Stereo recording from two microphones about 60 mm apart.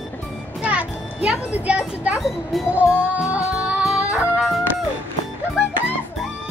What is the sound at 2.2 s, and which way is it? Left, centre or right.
Speech, centre.